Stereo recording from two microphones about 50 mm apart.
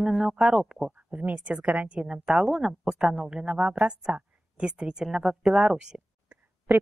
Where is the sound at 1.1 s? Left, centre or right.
Right; by 6.0 s centre.